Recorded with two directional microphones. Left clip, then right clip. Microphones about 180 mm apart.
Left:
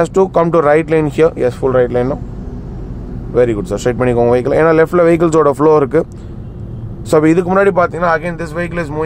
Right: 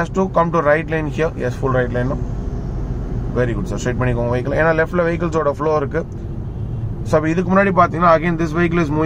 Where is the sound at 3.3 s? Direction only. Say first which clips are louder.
Left 9 dB; 50° left (ahead or behind).